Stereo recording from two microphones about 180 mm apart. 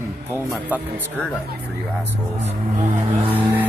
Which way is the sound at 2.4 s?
45° right (ahead or behind).